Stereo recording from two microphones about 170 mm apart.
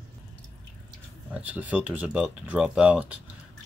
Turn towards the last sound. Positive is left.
turn(degrees=-5)  # may be behind; listen again after turning